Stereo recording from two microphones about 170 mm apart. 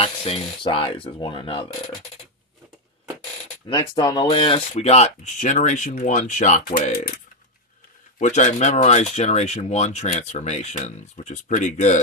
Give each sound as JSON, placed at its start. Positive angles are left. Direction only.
{"t": 0.0, "sound": "speech", "side_deg": 35}
{"t": 3.6, "sound": "speech", "side_deg": 30}
{"t": 8.2, "sound": "speech", "side_deg": 45}